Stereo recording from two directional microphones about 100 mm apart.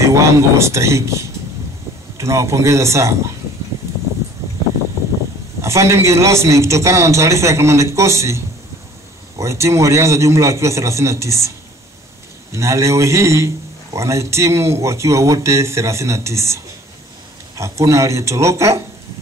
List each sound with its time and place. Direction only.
0.0 s a man's voice: 30° right (ahead or behind)
5.6 s a man's voice: 30° right (ahead or behind)
12.5 s a man's voice: 30° right (ahead or behind)